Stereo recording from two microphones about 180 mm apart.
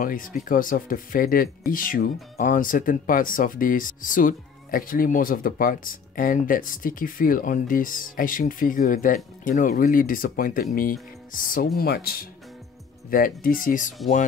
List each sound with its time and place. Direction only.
0.0 s speech: 50° left (ahead or behind)